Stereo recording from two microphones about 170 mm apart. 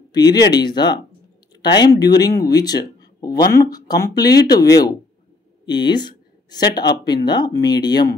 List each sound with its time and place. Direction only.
0.1 s speech: 25° left (ahead or behind)
4.2 s speech: 75° left (ahead or behind)
4.5 s speech: 20° left (ahead or behind)